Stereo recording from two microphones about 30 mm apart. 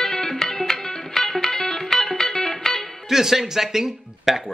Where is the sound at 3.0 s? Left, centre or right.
Centre.